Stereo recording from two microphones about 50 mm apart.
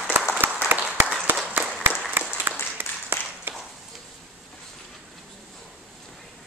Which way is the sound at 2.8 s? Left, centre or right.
Right.